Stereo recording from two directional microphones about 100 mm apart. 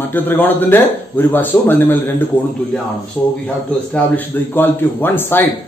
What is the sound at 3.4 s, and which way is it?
Speech, 15° left (ahead or behind).